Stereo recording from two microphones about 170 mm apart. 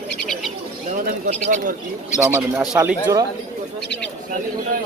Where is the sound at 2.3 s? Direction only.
15° right (ahead or behind).